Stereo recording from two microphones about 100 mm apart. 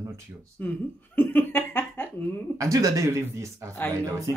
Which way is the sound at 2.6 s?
35° right (ahead or behind).